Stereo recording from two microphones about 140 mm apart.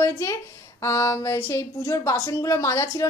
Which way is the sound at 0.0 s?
20° left (ahead or behind).